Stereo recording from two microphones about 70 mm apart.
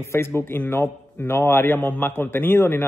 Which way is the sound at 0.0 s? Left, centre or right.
Left.